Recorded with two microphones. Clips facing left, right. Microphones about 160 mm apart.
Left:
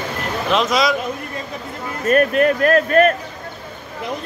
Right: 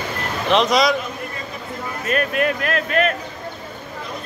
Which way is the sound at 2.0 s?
40° left (ahead or behind).